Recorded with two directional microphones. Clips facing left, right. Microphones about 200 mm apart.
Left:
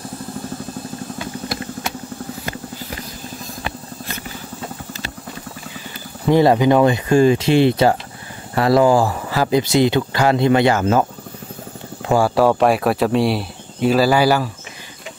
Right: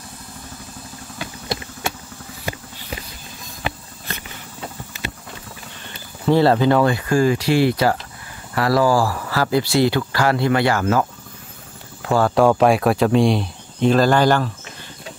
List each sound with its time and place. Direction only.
6.2 s speech: 15° left (ahead or behind)
12.1 s speech: 10° left (ahead or behind)